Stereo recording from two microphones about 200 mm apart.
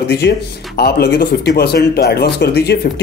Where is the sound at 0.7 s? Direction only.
50° left (ahead or behind).